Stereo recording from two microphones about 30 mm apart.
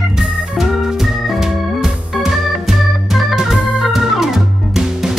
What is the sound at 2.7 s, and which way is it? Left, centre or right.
Organ, centre.